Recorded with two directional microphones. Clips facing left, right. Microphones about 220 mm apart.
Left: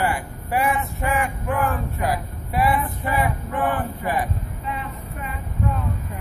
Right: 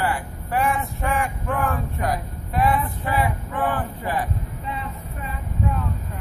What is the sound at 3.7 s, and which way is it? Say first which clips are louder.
Speech: left 1 dB; 15° left (ahead or behind).